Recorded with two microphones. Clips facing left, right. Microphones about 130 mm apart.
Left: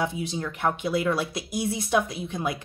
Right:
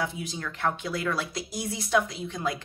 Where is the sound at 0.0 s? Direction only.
25° left (ahead or behind).